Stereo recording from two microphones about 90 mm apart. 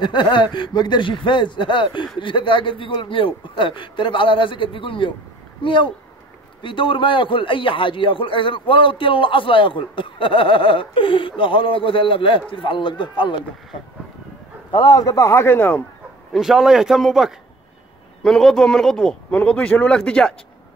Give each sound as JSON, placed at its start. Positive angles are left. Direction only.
{"t": 0.0, "sound": "a man's voice", "side_deg": 60}
{"t": 14.7, "sound": "a man's voice", "side_deg": 55}
{"t": 16.3, "sound": "speech", "side_deg": -5}
{"t": 19.3, "sound": "speech", "side_deg": 15}